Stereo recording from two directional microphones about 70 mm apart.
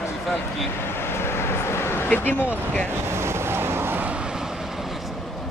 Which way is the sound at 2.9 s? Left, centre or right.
Right.